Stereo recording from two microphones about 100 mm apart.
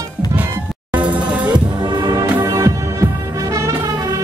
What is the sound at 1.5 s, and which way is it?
Music, 45° right (ahead or behind).